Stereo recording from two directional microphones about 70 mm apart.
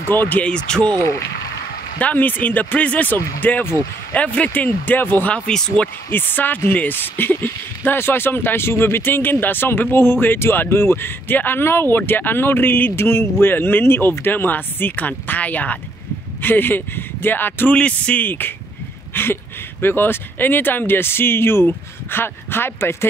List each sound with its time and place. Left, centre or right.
0.0 s speech: left
0.4 s speech: centre
2.0 s speech: left
19.1 s a sound: left
19.8 s speech: left